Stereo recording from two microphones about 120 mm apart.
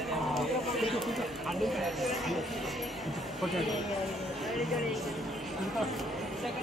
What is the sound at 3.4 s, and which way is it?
Speech, centre (ahead or behind).